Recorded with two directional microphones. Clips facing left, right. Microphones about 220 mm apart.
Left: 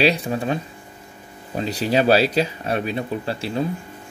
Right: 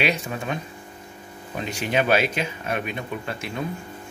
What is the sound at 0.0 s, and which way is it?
Speech, 35° left (ahead or behind).